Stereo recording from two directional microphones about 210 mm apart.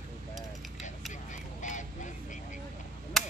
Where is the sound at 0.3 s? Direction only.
Centre (ahead or behind).